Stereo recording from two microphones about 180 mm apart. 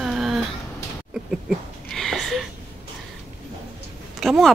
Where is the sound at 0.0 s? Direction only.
Centre (ahead or behind).